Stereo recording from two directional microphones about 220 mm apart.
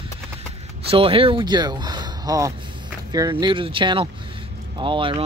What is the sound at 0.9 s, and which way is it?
Speech, 25° right (ahead or behind).